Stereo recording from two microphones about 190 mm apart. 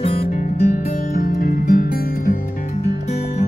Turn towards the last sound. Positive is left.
turn(degrees=45)  # may be behind; listen again after turning